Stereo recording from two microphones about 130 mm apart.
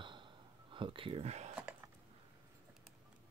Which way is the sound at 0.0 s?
40° right (ahead or behind).